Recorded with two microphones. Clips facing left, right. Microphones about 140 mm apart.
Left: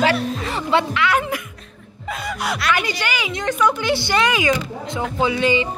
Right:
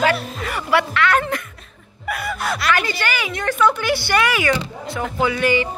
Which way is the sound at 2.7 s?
15° left (ahead or behind).